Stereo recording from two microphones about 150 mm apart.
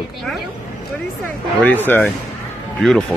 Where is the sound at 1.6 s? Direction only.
15° left (ahead or behind).